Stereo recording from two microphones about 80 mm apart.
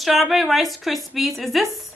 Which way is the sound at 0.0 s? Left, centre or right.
Centre.